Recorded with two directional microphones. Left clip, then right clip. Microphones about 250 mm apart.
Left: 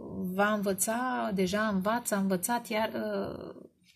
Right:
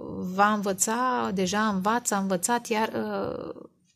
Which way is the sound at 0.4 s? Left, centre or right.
Right.